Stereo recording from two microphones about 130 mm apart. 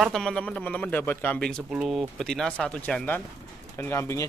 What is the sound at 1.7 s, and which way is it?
Speech, 5° right (ahead or behind).